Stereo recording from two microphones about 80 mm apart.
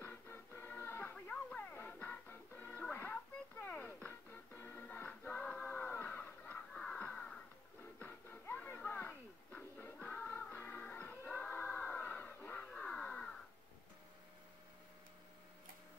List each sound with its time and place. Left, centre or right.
0.0 s music: left
6.7 s a sound: centre
8.0 s music: left
12.7 s crow: centre